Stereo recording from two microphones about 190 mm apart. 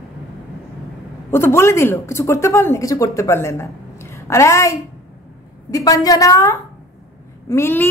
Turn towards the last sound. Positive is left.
turn(degrees=10)  # may be behind; listen again after turning